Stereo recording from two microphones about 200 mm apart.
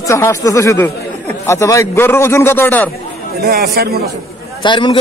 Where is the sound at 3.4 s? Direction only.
50° right (ahead or behind).